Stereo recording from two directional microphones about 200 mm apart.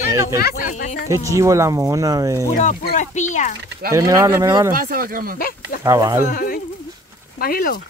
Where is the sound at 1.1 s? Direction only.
15° right (ahead or behind).